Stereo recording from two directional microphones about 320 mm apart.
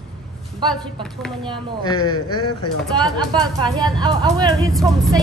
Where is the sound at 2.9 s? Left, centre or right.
Centre.